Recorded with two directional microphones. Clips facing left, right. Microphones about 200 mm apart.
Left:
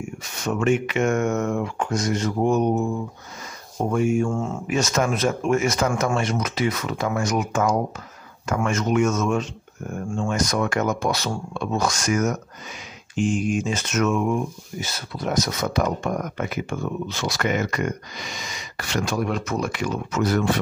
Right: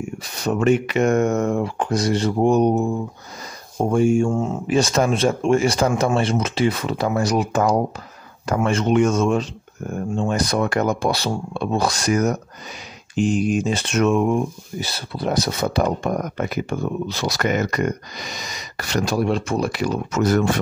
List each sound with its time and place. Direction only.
0.2 s speech: 35° right (ahead or behind)
4.3 s speech: 20° right (ahead or behind)
4.6 s speech: 30° right (ahead or behind)